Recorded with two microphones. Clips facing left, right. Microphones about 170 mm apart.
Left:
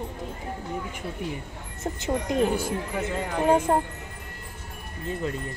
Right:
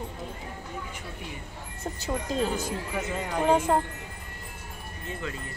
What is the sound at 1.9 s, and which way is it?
Speech, 20° left (ahead or behind).